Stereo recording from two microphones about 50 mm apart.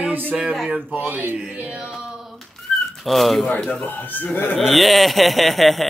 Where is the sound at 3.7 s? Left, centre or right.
Left.